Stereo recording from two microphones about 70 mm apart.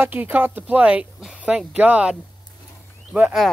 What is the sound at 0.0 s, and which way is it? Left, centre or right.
Speech, right.